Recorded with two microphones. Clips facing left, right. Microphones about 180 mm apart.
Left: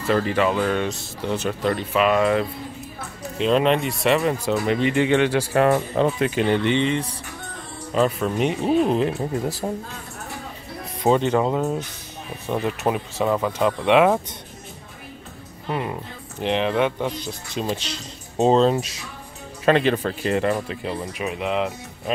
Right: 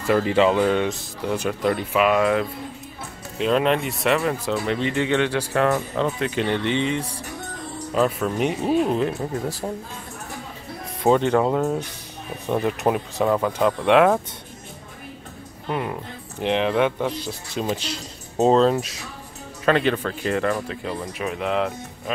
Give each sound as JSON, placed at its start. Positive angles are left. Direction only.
{"t": 0.0, "sound": "speech", "side_deg": -15}
{"t": 6.8, "sound": "speech", "side_deg": -10}
{"t": 8.8, "sound": "speech", "side_deg": 25}
{"t": 9.6, "sound": "speech", "side_deg": 15}
{"t": 11.1, "sound": "speech", "side_deg": 10}
{"t": 15.7, "sound": "speech", "side_deg": 5}
{"t": 16.3, "sound": "speech", "side_deg": -10}
{"t": 19.6, "sound": "speech", "side_deg": 30}
{"t": 20.5, "sound": "speech", "side_deg": 10}